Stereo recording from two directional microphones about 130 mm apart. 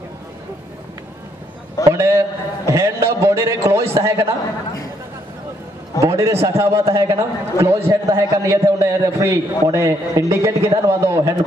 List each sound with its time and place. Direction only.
1.9 s a sound: 20° right (ahead or behind)
2.7 s a man's voice: 20° right (ahead or behind)
5.9 s a man's voice: 25° right (ahead or behind)